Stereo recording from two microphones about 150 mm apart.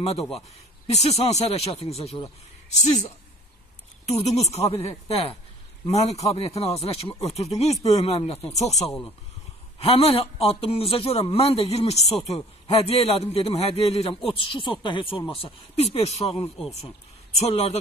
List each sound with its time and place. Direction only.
0.8 s speech: 45° left (ahead or behind)
4.1 s a man's voice: 45° left (ahead or behind)
16.3 s speech: 5° left (ahead or behind)
17.4 s speech: 45° left (ahead or behind)